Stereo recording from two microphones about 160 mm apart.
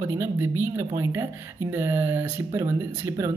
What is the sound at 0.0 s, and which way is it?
Speech, 15° right (ahead or behind).